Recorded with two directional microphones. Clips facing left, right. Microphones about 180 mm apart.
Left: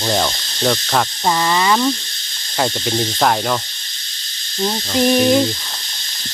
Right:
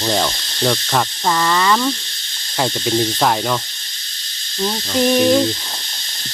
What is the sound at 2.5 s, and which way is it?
Speech, centre (ahead or behind).